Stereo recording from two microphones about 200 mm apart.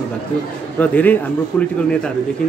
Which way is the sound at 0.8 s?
10° left (ahead or behind).